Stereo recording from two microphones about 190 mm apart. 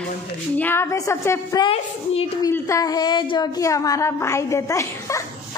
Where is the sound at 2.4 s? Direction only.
15° left (ahead or behind).